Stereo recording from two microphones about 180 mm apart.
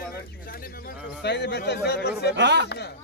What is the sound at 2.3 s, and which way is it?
Speech, 75° right (ahead or behind).